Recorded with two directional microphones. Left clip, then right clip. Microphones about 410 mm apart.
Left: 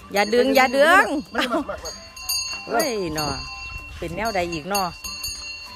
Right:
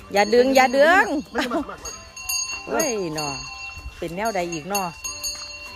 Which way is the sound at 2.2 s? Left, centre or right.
Centre.